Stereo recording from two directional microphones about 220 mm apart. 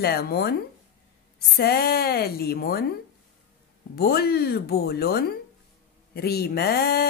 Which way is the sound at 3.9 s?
45° left (ahead or behind).